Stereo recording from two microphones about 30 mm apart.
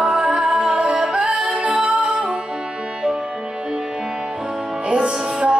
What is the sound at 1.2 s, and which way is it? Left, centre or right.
Music, right.